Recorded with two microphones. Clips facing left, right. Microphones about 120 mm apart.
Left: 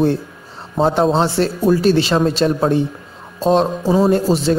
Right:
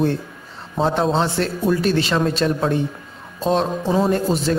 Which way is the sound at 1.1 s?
30° left (ahead or behind).